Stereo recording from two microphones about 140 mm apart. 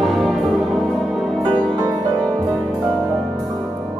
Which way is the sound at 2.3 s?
30° right (ahead or behind).